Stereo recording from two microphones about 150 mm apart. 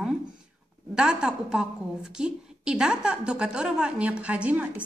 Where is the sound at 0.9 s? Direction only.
5° right (ahead or behind).